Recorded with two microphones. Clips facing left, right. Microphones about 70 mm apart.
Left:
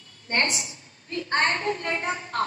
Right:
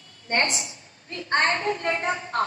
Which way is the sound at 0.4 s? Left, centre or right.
Right.